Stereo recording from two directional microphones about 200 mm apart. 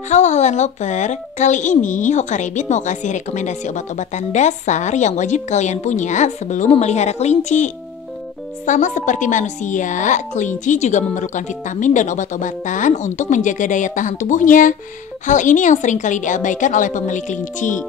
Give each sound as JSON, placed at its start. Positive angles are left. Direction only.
{"t": 0.1, "sound": "a woman's voice", "side_deg": 35}